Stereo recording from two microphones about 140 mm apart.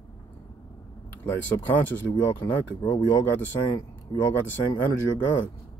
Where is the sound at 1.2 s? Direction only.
15° left (ahead or behind).